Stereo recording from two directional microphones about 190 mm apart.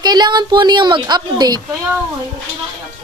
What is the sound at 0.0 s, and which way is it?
A woman's voice, 20° right (ahead or behind).